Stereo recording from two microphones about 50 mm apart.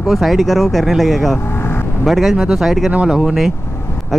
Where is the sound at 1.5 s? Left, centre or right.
Left.